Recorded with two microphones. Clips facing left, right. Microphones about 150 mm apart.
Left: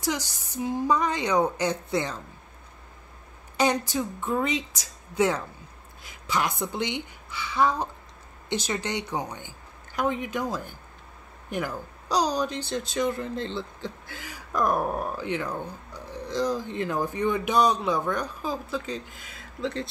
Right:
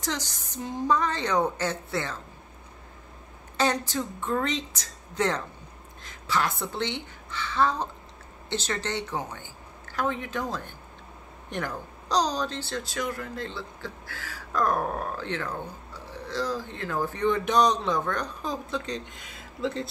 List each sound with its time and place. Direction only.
0.0 s speech: 10° left (ahead or behind)
3.5 s a woman's voice: 15° left (ahead or behind)